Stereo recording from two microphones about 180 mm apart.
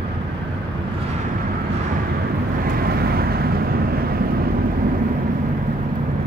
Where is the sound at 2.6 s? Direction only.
55° right (ahead or behind).